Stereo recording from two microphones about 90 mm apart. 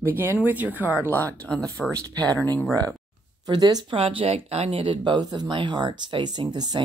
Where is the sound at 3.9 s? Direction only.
85° right.